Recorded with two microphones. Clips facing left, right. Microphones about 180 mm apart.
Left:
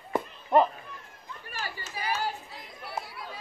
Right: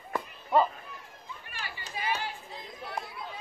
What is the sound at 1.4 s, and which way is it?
Chatter, 40° left (ahead or behind).